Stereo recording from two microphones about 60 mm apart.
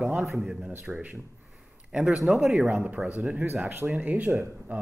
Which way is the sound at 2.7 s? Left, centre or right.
Right.